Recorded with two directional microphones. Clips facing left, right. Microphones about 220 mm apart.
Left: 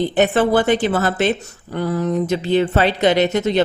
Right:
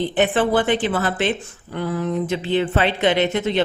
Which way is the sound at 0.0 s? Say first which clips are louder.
Left 3 dB; 40° left (ahead or behind).